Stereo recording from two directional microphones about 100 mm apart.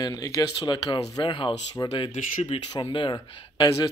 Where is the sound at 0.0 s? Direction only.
40° left (ahead or behind).